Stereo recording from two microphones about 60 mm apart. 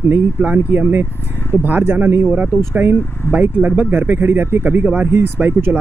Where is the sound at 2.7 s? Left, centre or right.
Right.